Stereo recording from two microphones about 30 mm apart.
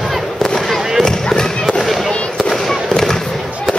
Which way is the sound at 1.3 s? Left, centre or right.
Centre.